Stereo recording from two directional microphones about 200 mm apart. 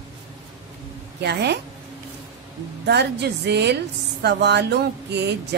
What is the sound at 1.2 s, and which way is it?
Music, 55° right (ahead or behind).